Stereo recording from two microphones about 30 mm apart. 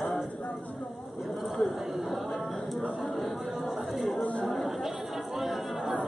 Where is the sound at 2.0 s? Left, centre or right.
Centre.